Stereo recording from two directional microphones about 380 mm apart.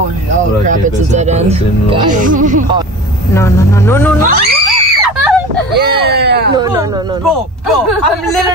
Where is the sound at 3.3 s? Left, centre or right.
Centre.